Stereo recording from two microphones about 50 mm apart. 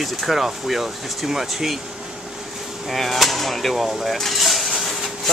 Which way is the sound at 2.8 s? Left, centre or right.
Centre.